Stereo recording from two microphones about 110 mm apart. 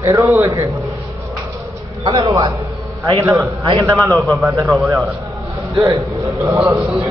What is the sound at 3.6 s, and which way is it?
Speech, 45° right (ahead or behind).